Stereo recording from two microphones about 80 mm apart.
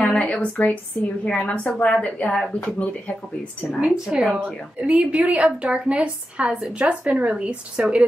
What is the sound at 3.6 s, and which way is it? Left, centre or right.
A woman's voice, centre.